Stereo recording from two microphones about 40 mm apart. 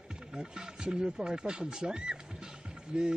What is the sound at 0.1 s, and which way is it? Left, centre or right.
Speech, centre.